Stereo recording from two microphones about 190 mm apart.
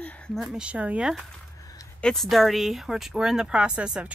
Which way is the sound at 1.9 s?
Centre (ahead or behind).